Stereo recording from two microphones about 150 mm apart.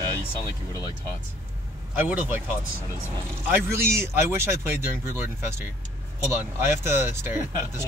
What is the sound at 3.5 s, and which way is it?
Speech, 15° right (ahead or behind).